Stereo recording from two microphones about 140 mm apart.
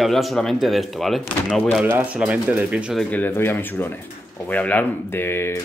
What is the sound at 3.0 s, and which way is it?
Speech, 10° left (ahead or behind).